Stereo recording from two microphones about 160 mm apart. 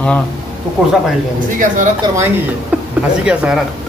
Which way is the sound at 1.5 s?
55° right (ahead or behind).